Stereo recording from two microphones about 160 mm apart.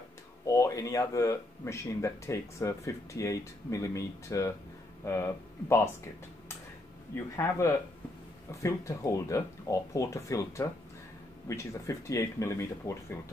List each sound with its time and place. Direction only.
0.5 s speech: 20° left (ahead or behind)
7.3 s speech: 20° left (ahead or behind)